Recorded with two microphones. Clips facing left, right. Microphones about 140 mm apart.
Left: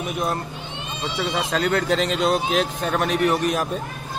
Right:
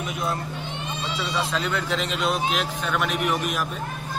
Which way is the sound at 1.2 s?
60° left (ahead or behind).